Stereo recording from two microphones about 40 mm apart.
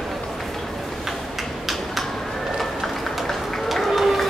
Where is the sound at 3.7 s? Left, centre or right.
Centre.